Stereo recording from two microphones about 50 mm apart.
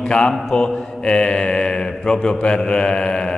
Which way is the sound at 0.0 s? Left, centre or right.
Centre.